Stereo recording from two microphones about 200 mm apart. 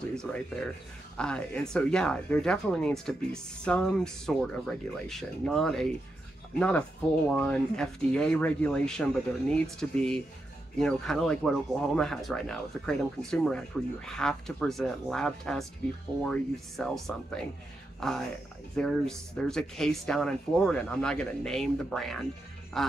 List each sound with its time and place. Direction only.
0.1 s speech: 5° left (ahead or behind)
7.2 s speech: 5° left (ahead or behind)